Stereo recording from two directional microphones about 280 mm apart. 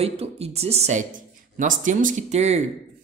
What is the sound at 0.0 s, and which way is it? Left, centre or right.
Speech, right.